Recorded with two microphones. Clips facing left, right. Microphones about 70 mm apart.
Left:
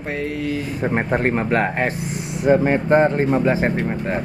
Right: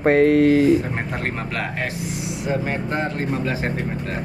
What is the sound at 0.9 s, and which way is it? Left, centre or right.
Speech, left.